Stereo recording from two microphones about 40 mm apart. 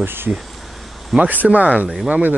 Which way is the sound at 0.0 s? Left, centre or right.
Right.